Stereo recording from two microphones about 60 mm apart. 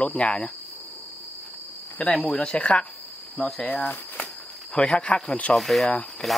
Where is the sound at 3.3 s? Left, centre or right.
Left.